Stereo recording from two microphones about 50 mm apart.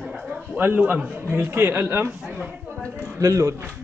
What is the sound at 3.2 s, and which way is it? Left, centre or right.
Speech, right.